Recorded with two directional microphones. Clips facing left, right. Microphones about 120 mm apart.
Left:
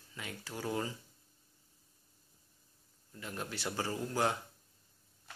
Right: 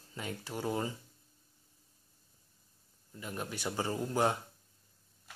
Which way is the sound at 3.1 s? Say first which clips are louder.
Right 2 dB; 15° right (ahead or behind).